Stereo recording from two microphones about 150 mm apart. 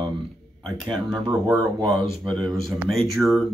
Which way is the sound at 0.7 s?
5° left (ahead or behind).